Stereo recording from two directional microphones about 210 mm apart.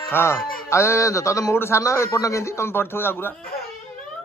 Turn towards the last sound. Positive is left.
turn(degrees=10)  # may be behind; listen again after turning